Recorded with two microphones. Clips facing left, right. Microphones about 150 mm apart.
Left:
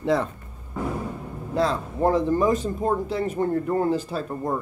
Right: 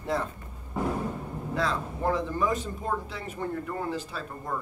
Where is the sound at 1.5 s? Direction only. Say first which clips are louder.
Left 6 dB; 35° left (ahead or behind).